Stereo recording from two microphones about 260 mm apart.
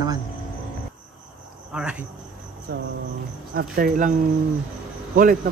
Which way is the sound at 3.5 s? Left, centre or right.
Right.